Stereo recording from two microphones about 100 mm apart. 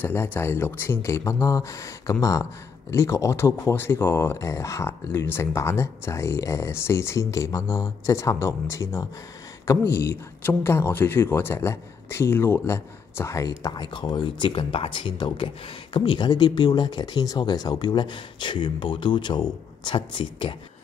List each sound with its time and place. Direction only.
0.0 s speech: 20° left (ahead or behind)
13.6 s speech: 45° left (ahead or behind)